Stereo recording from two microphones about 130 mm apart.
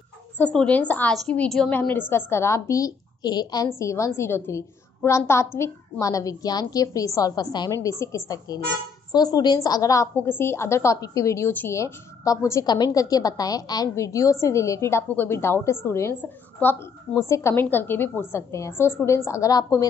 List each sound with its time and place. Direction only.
0.4 s a woman's voice: 10° left (ahead or behind); by 19.9 s 25° left (ahead or behind)